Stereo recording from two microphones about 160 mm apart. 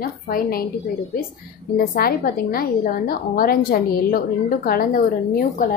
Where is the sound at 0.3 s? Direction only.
65° left (ahead or behind).